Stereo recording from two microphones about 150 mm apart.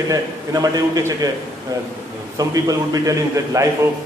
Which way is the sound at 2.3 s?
25° right (ahead or behind).